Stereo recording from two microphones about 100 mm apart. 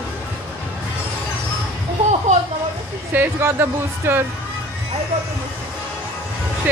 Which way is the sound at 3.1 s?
20° right (ahead or behind).